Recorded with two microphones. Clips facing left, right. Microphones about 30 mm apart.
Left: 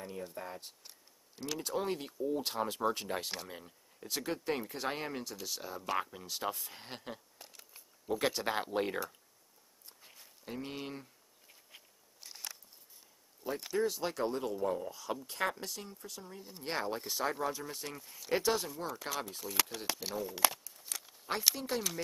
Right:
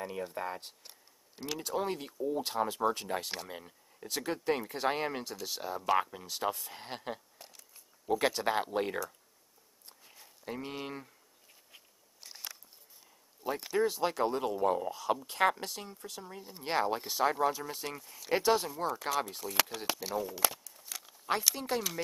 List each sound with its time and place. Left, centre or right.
0.0 s speech: right
0.3 s speech: right
0.8 s speech: centre
7.4 s a sound: centre
8.1 s speech: centre
10.4 s speech: centre
12.2 s a sound: centre
13.4 s speech: centre
14.4 s speech: right
15.2 s speech: centre
20.4 s a sound: centre
21.5 s speech: centre